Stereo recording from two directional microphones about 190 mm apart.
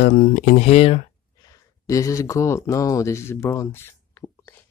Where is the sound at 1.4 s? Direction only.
15° left (ahead or behind).